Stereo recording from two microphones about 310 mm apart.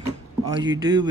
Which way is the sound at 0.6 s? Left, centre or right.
Centre.